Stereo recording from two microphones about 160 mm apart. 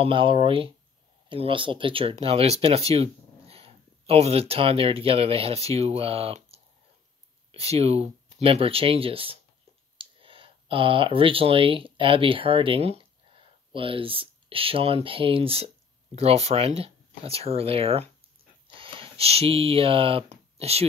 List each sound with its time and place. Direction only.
0.0 s speech: 30° right (ahead or behind)